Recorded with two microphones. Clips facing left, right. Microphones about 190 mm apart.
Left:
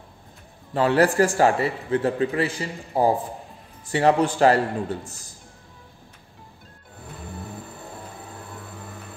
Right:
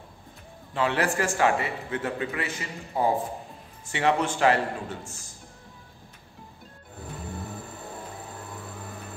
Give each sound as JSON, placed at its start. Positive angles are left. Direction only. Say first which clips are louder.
{"t": 0.7, "sound": "a man's voice", "louder": "left 7 dB", "side_deg": 40}